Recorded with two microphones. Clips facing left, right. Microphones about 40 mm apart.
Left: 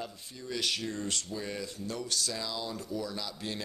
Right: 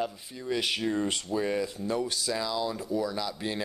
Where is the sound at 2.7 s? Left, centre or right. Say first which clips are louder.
Right 6 dB; centre.